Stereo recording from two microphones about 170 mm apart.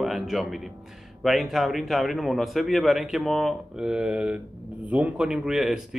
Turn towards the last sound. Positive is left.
turn(degrees=-5)  # may be behind; listen again after turning